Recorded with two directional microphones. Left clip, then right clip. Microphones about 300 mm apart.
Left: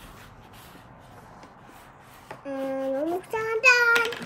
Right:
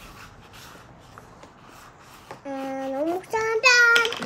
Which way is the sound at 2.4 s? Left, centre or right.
Centre.